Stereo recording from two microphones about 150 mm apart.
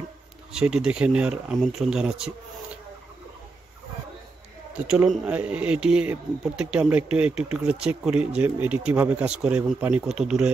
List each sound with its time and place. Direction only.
0.5 s speech: 5° right (ahead or behind)
4.8 s speech: 5° right (ahead or behind)